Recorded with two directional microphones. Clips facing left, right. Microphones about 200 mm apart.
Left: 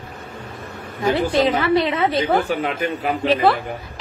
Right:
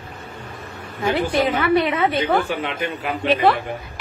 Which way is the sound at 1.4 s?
25° left (ahead or behind).